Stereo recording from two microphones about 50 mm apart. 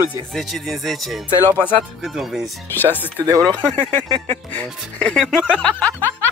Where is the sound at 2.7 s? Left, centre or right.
Left.